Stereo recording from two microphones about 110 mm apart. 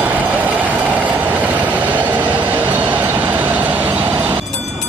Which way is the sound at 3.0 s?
15° right (ahead or behind).